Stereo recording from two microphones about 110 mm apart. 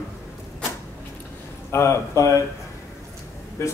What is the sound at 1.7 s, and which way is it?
Speech, 25° left (ahead or behind).